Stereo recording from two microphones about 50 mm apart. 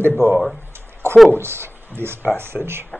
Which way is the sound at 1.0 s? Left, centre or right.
Right.